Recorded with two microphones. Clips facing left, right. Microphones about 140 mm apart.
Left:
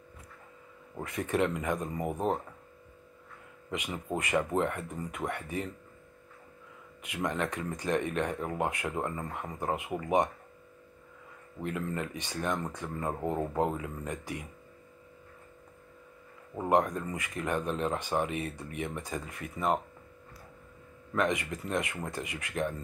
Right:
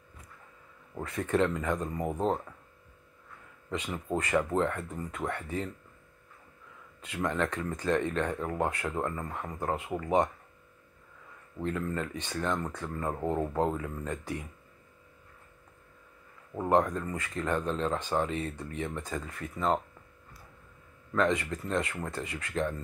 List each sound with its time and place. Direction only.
1.0 s speech: 15° left (ahead or behind)
3.7 s speech: 15° left (ahead or behind)
7.0 s speech: 15° left (ahead or behind)
11.6 s speech: 15° left (ahead or behind)
16.6 s speech: 15° left (ahead or behind)
21.1 s speech: 15° left (ahead or behind)